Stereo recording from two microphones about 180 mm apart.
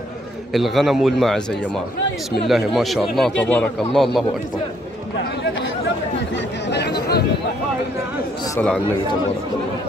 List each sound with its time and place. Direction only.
0.5 s speech: centre (ahead or behind)
2.4 s speech: centre (ahead or behind)
6.3 s chatter: 70° left (ahead or behind)